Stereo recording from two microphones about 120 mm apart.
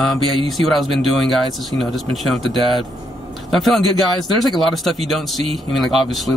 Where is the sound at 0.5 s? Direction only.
Centre (ahead or behind).